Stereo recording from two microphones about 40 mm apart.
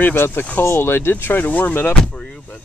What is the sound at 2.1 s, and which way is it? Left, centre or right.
Vehicle, left.